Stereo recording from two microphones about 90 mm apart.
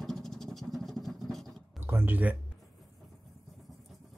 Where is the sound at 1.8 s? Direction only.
25° right (ahead or behind).